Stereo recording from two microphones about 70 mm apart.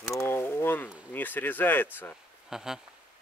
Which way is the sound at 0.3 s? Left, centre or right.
Left.